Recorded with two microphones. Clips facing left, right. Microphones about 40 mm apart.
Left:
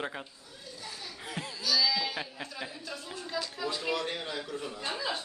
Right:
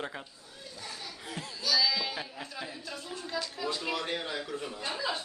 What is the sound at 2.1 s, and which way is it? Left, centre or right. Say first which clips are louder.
Speech: left 1 dB; centre.